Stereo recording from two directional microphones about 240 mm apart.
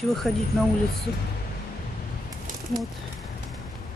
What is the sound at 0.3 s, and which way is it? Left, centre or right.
Speech, centre.